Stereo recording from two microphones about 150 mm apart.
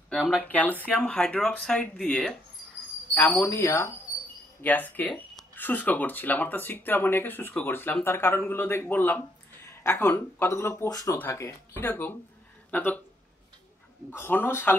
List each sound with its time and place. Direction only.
0.1 s speech: centre (ahead or behind)
0.5 s speech: 10° left (ahead or behind)
3.3 s speech: 20° left (ahead or behind)
14.1 s speech: 15° left (ahead or behind)